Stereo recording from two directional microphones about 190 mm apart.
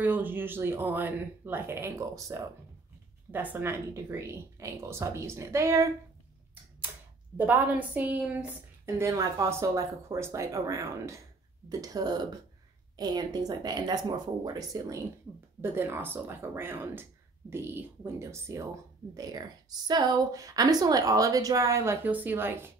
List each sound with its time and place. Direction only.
0.0 s a woman's voice: 10° right (ahead or behind)
7.3 s a woman's voice: 10° right (ahead or behind)